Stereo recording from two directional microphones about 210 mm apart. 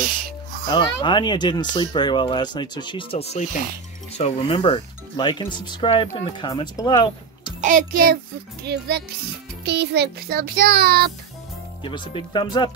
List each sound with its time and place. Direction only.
0.7 s speech: 20° left (ahead or behind)
7.6 s a child's voice: 40° right (ahead or behind)
8.6 s child singing: 50° right (ahead or behind)
11.8 s speech: 20° left (ahead or behind)